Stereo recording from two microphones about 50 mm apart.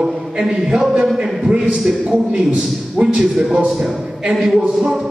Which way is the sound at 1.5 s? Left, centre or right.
Right.